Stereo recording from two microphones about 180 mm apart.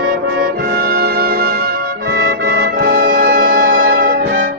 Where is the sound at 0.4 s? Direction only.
60° right (ahead or behind).